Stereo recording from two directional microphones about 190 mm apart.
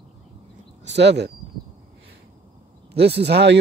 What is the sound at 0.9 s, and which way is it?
Speech, 65° right (ahead or behind).